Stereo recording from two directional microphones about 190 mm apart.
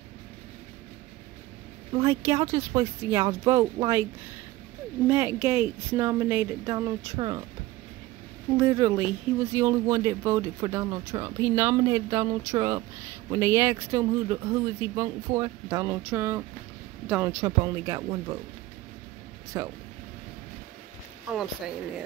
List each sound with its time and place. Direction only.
2.0 s speech: 15° right (ahead or behind)
5.0 s speech: 10° right (ahead or behind)
8.5 s speech: 15° right (ahead or behind)
19.5 s speech: 20° right (ahead or behind)